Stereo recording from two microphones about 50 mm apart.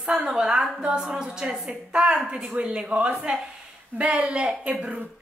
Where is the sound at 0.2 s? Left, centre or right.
Centre.